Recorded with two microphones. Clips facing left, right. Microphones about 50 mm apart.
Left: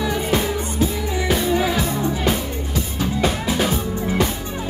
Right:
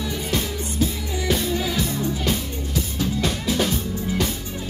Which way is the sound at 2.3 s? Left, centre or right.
Centre.